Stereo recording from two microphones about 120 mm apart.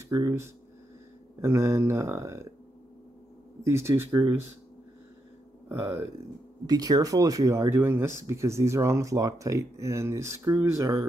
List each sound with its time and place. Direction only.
0.1 s speech: 25° right (ahead or behind)
3.6 s speech: 20° right (ahead or behind)
6.6 s speech: 35° right (ahead or behind)